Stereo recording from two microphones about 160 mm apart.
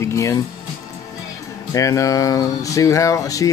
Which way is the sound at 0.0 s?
20° left (ahead or behind).